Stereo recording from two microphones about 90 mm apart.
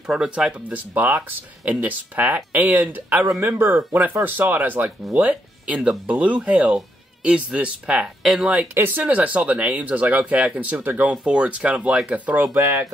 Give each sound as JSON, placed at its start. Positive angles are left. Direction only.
{"t": 0.0, "sound": "speech", "side_deg": -10}